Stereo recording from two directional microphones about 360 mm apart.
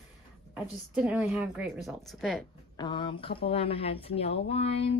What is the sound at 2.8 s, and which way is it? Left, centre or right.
Speech, centre.